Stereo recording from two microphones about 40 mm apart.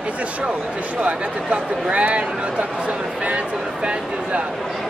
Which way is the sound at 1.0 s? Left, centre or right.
Right.